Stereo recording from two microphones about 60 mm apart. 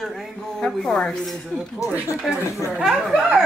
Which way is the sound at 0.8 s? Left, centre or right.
Centre.